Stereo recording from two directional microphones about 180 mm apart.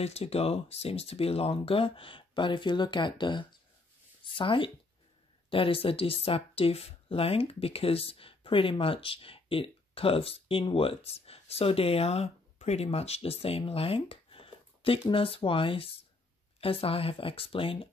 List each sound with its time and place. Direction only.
0.0 s speech: 35° left (ahead or behind)